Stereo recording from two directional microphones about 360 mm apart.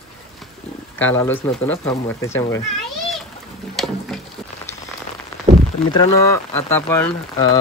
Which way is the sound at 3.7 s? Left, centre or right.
Centre.